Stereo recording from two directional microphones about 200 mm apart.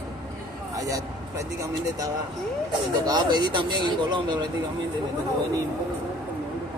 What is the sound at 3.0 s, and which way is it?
Speech, 20° right (ahead or behind).